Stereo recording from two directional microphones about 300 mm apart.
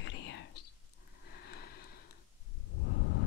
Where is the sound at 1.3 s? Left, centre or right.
Left.